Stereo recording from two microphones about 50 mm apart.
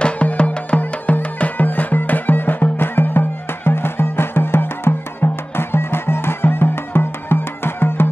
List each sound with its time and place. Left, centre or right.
0.0 s music: left